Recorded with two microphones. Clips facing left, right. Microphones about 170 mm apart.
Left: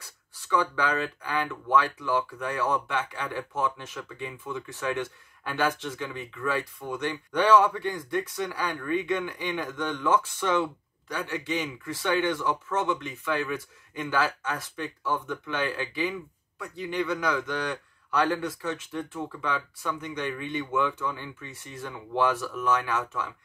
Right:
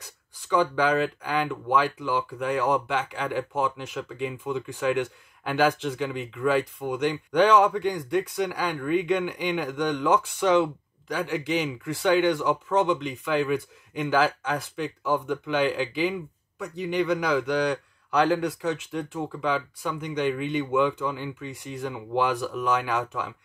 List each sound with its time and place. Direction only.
0.0 s speech: 15° right (ahead or behind)